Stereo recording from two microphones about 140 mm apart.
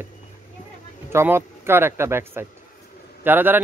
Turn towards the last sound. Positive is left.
turn(degrees=-15)  # may be behind; listen again after turning